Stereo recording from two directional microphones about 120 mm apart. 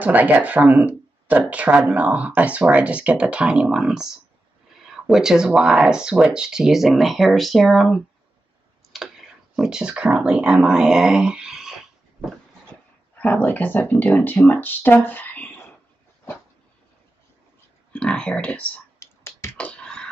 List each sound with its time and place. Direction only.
0.0 s speech: 15° right (ahead or behind)
8.9 s clicking: centre (ahead or behind)
9.6 s speech: 5° right (ahead or behind)
13.2 s speech: 15° left (ahead or behind)
17.9 s speech: 5° left (ahead or behind)
18.9 s a sound: 25° left (ahead or behind)
19.5 s a sound: 10° left (ahead or behind)